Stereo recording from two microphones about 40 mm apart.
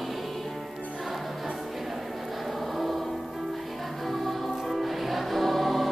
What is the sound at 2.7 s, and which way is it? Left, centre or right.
Music, centre.